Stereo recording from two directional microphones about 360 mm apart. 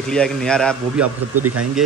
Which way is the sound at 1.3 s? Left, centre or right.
Right.